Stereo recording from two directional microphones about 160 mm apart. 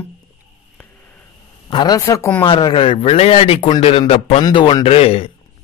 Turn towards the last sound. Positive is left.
turn(degrees=40)  # may be behind; listen again after turning